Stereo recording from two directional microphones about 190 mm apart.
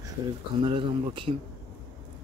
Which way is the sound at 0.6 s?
25° right (ahead or behind).